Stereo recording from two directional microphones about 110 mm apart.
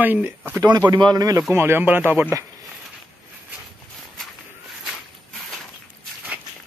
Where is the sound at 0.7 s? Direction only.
40° right (ahead or behind).